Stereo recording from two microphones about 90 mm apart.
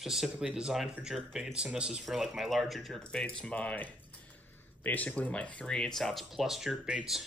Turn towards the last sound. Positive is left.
turn(degrees=-5)  # may be behind; listen again after turning